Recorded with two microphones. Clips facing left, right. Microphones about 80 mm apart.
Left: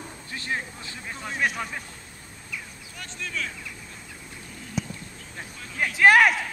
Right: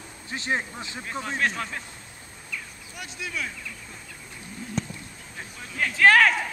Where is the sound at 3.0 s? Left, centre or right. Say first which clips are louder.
Even; centre.